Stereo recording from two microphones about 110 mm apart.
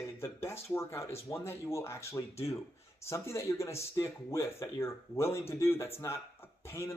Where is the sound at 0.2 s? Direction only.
25° left (ahead or behind).